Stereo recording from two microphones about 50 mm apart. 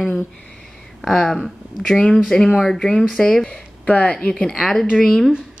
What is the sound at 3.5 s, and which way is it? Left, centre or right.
Speech, left.